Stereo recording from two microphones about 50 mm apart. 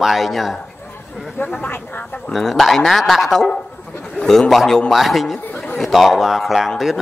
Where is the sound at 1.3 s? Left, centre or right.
Left.